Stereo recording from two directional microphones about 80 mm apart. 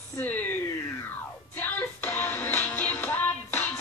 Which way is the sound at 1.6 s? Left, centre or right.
Left.